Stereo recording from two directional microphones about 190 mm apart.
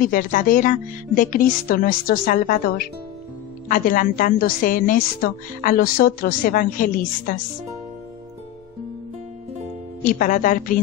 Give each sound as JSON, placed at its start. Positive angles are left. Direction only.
{"t": 0.1, "sound": "a woman's voice", "side_deg": 45}
{"t": 10.0, "sound": "a woman's voice", "side_deg": 45}